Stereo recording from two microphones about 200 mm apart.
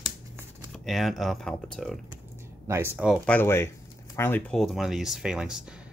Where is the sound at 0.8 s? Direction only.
Centre (ahead or behind).